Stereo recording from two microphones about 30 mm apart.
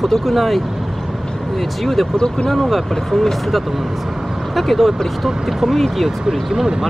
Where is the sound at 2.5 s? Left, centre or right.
Centre.